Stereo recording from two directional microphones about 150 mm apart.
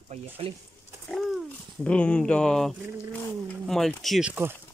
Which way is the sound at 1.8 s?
10° left (ahead or behind).